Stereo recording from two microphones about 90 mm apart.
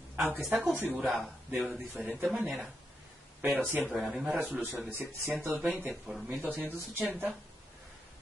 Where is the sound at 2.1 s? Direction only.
10° right (ahead or behind).